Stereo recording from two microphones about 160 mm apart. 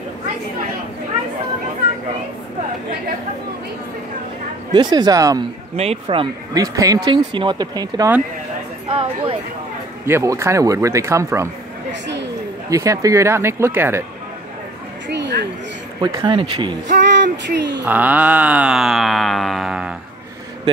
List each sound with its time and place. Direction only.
4.7 s speech: 25° right (ahead or behind)
5.8 s speech: 35° right (ahead or behind)
6.5 s speech: 20° right (ahead or behind)
10.0 s speech: 15° right (ahead or behind)
11.9 s a sound: 90° right
12.6 s speech: 20° right (ahead or behind)
15.0 s a sound: 90° right
16.0 s speech: 25° right (ahead or behind)
16.8 s speech: 90° right
17.8 s music: 10° right (ahead or behind)